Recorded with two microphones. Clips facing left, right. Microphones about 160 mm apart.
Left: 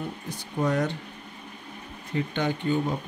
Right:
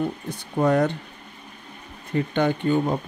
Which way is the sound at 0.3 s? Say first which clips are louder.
Right 5 dB; 60° right (ahead or behind).